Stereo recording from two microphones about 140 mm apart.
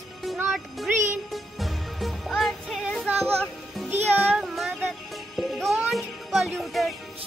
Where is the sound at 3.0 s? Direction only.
15° right (ahead or behind).